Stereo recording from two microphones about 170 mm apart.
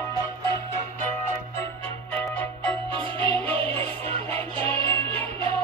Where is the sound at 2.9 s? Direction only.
30° right (ahead or behind).